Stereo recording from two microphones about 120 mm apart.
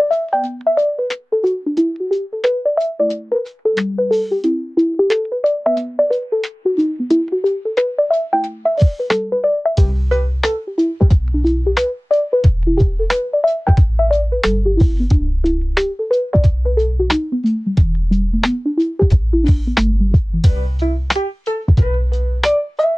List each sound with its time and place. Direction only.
0.1 s music: centre (ahead or behind)
22.4 s music: centre (ahead or behind)